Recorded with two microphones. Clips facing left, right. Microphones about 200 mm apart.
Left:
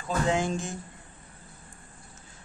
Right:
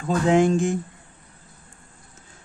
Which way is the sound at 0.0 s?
65° right (ahead or behind).